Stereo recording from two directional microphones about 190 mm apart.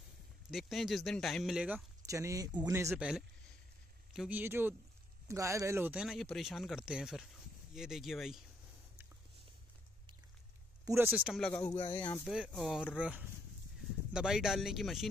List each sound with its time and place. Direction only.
0.5 s speech: centre (ahead or behind)
2.0 s speech: 15° right (ahead or behind)
4.1 s speech: 5° right (ahead or behind)
10.9 s speech: 10° right (ahead or behind); by 11.9 s 10° left (ahead or behind)
11.9 s speech: 20° left (ahead or behind)
12.3 s speech: centre (ahead or behind)